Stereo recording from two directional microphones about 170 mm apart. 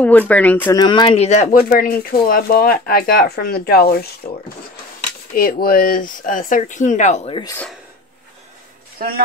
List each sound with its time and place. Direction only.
0.0 s speech: 10° left (ahead or behind)
0.7 s speech: 25° left (ahead or behind); by 1.6 s 45° left (ahead or behind)
1.6 s speech: 60° left (ahead or behind)
5.3 s speech: 55° left (ahead or behind)
8.9 s speech: 60° right (ahead or behind)